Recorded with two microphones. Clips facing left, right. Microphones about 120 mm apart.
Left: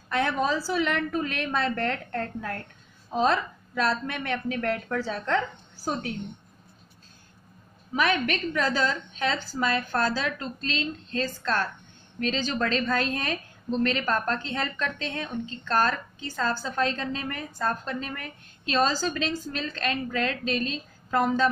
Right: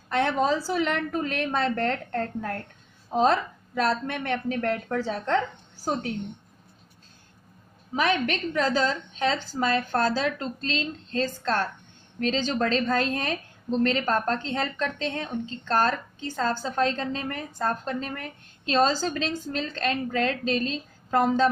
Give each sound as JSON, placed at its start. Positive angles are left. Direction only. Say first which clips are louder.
{"t": 0.2, "sound": "a woman's voice", "louder": "right 2 dB", "side_deg": -30}
{"t": 8.3, "sound": "a woman's voice", "louder": "right 1 dB", "side_deg": -30}
{"t": 17.5, "sound": "a woman's voice", "louder": "right 1 dB", "side_deg": -25}
{"t": 17.8, "sound": "a woman's voice", "louder": "right 2 dB", "side_deg": -35}